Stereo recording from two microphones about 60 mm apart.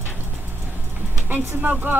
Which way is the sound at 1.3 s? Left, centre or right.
Right.